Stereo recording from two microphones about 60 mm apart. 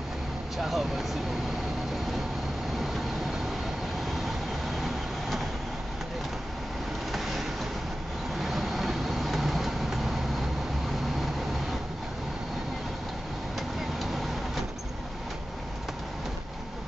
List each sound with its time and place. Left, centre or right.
0.6 s speech: centre
7.1 s vehicle: centre